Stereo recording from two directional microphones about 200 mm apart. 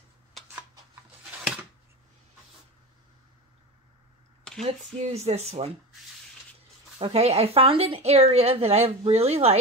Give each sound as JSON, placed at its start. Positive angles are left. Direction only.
{"t": 4.5, "sound": "a sound", "side_deg": 5}
{"t": 5.0, "sound": "a woman's voice", "side_deg": -35}
{"t": 7.0, "sound": "a woman's voice", "side_deg": -30}